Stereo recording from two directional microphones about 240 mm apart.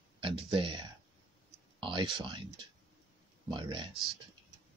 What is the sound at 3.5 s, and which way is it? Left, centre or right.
Speech, centre.